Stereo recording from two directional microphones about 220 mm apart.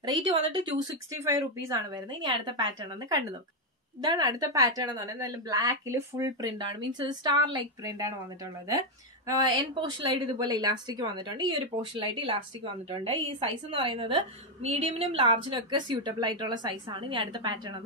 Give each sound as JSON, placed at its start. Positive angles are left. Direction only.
{"t": 0.0, "sound": "a woman's voice", "side_deg": -25}